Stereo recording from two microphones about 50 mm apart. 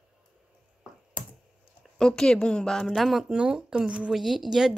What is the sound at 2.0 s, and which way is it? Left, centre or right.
Speech, centre.